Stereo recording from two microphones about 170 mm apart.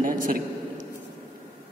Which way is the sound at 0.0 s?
55° right (ahead or behind).